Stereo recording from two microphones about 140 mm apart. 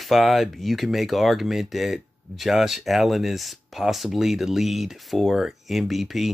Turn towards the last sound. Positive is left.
turn(degrees=0)  # may be behind; listen again after turning